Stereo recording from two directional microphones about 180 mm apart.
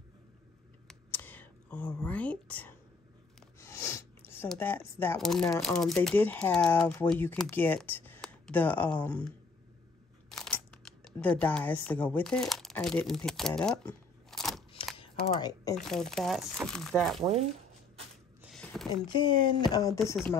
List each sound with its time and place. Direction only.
0.8 s whispering: 10° left (ahead or behind)
3.5 s a sound: 15° left (ahead or behind)
4.5 s speech: 10° left (ahead or behind)
10.3 s speech: 5° left (ahead or behind)
15.0 s typing: 20° left (ahead or behind)
15.7 s speech: 5° left (ahead or behind)
18.4 s a sound: 5° left (ahead or behind)
19.0 s speech: 25° left (ahead or behind)